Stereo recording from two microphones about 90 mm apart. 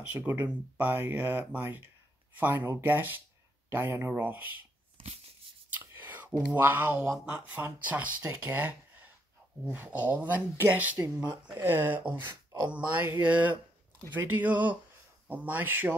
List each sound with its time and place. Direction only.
0.1 s speech: 20° right (ahead or behind)
5.8 s a sound: 20° right (ahead or behind)
7.2 s speech: 20° right (ahead or behind)